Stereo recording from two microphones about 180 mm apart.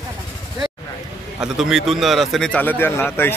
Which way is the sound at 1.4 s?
Centre (ahead or behind).